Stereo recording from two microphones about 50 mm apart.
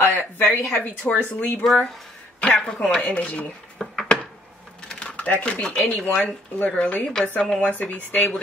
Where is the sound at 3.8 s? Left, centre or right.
Centre.